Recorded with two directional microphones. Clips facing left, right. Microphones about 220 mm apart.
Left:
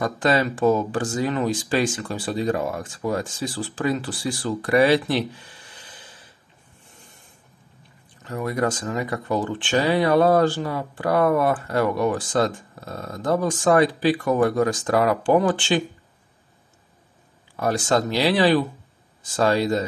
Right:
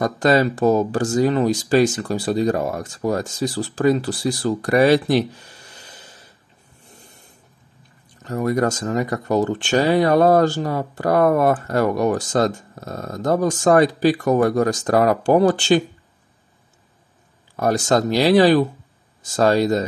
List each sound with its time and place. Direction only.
0.0 s speech: 40° right (ahead or behind)
8.2 s speech: 45° right (ahead or behind)
17.6 s speech: 40° right (ahead or behind)